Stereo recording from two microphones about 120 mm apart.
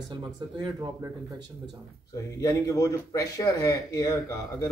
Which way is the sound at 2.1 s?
25° left (ahead or behind).